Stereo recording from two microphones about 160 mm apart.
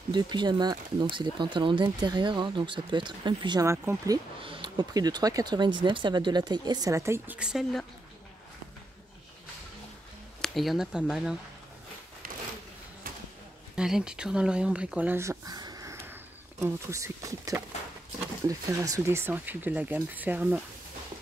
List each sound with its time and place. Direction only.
0.1 s speech: 30° right (ahead or behind)
3.6 s speech: 15° right (ahead or behind)
4.4 s speech: 30° right (ahead or behind); by 7.8 s 5° right (ahead or behind)
10.4 s speech: centre (ahead or behind)
13.7 s speech: 5° right (ahead or behind)